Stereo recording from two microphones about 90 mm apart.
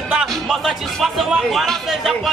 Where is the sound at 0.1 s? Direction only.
10° right (ahead or behind).